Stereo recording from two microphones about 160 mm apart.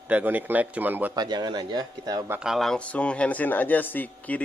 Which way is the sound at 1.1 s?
25° right (ahead or behind).